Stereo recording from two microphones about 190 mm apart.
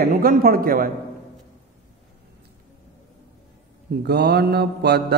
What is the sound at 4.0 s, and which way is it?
Mantra, 60° right (ahead or behind).